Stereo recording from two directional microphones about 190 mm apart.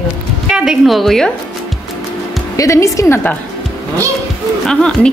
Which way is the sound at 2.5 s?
15° left (ahead or behind).